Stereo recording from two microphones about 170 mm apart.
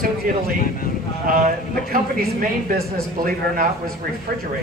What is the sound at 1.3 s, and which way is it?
Speech, 55° right (ahead or behind).